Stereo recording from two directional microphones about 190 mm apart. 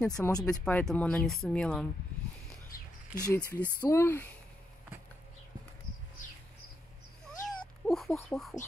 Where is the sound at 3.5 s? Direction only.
10° left (ahead or behind).